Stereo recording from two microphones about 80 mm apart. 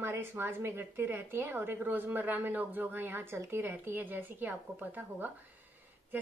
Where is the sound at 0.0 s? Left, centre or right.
Right.